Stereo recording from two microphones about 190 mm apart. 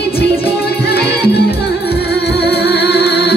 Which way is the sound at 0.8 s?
55° left (ahead or behind).